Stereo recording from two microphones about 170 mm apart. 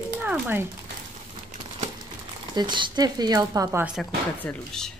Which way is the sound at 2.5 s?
25° right (ahead or behind).